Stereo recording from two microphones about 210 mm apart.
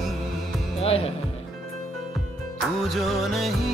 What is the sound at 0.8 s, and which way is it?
Music, 30° left (ahead or behind).